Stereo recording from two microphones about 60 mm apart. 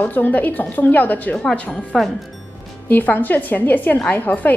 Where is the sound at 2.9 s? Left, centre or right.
Left.